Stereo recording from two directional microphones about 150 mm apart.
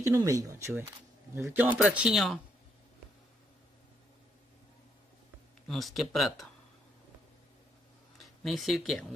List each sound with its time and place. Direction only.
0.0 s speech: 20° right (ahead or behind); by 2.4 s centre (ahead or behind)
5.7 s speech: centre (ahead or behind)
8.5 s speech: centre (ahead or behind)